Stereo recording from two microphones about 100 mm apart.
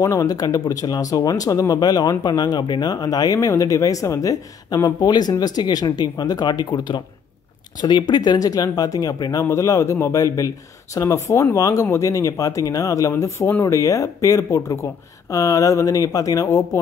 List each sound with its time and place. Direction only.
0.0 s speech: 35° left (ahead or behind)